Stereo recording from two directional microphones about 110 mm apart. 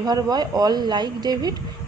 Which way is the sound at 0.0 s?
35° right (ahead or behind).